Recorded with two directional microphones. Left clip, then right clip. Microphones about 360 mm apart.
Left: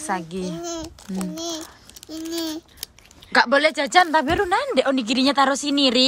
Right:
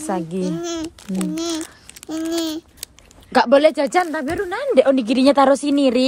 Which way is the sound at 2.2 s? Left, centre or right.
Centre.